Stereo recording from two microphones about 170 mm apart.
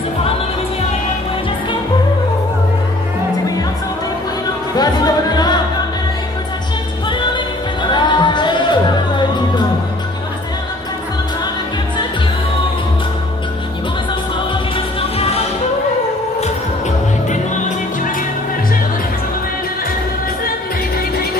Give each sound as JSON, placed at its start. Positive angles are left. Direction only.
{"t": 4.7, "sound": "music", "side_deg": 25}
{"t": 7.1, "sound": "music", "side_deg": 30}
{"t": 15.0, "sound": "music", "side_deg": 35}
{"t": 17.3, "sound": "music", "side_deg": 45}